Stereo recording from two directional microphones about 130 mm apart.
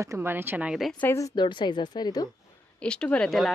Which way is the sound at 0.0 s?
20° right (ahead or behind).